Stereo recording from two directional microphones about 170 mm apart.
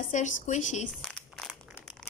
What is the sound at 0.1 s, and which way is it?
Speech, 45° left (ahead or behind).